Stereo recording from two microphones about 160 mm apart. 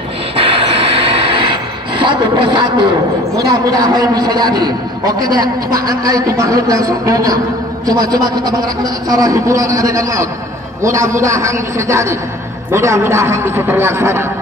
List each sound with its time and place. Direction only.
0.4 s train: 35° right (ahead or behind)
2.0 s a man's voice: 30° right (ahead or behind)